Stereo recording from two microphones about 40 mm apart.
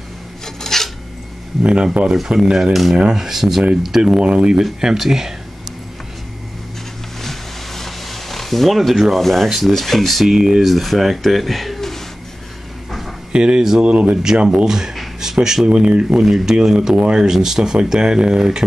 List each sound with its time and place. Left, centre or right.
0.6 s filing: centre
1.6 s speech: right
2.2 s speech: centre
4.2 s speech: right
4.9 s speech: centre
7.2 s a sound: centre
9.2 s speech: centre
10.2 s speech: centre
13.3 s speech: right
13.8 s speech: right
14.2 s speech: centre
15.6 s speech: right
16.2 s speech: centre